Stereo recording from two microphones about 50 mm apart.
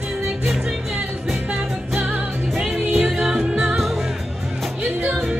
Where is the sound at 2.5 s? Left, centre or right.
Centre.